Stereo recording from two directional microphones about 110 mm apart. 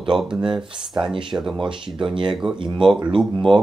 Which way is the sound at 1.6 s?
50° right (ahead or behind).